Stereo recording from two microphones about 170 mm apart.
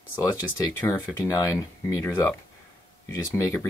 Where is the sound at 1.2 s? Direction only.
20° left (ahead or behind).